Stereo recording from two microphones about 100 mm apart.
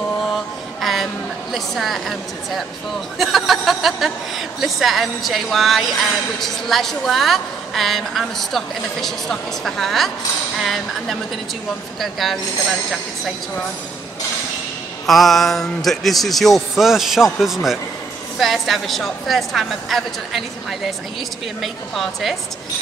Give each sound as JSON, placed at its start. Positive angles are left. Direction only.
{"t": 0.2, "sound": "mantra", "side_deg": 0}
{"t": 1.5, "sound": "a woman's voice", "side_deg": 0}
{"t": 15.0, "sound": "a woman's voice", "side_deg": 0}